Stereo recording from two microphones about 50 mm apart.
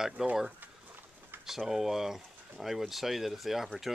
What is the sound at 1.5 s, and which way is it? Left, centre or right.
Speech, centre.